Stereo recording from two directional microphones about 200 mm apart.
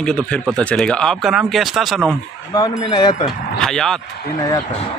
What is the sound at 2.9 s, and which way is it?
Speech, 20° left (ahead or behind).